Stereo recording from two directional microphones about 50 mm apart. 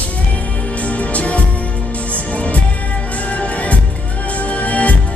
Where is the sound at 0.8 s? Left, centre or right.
Left.